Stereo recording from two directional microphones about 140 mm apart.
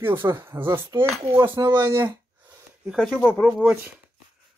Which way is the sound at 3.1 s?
10° left (ahead or behind).